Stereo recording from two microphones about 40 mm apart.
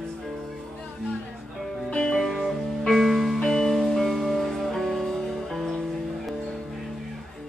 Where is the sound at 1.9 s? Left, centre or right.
Centre.